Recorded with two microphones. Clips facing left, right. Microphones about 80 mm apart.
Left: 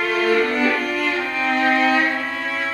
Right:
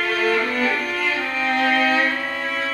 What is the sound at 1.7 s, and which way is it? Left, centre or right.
Violin, centre.